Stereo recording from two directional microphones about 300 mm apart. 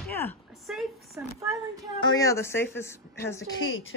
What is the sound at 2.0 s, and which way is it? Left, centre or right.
Speech, centre.